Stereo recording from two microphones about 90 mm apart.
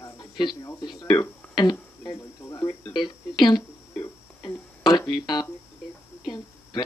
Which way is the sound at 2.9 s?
55° left (ahead or behind).